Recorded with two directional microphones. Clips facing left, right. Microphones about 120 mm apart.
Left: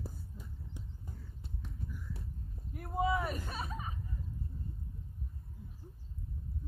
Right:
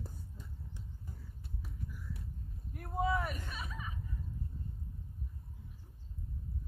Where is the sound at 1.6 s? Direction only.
5° right (ahead or behind).